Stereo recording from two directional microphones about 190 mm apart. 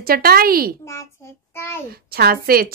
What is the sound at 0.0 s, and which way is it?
Speech, 50° right (ahead or behind).